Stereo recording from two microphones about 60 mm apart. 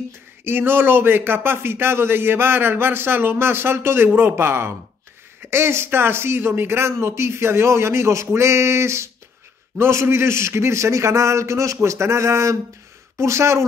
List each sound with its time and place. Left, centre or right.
0.4 s a man's voice: right